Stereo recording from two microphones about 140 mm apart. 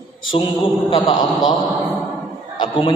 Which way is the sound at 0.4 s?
35° left (ahead or behind).